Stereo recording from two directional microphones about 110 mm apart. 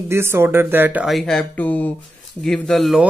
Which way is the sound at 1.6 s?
15° left (ahead or behind).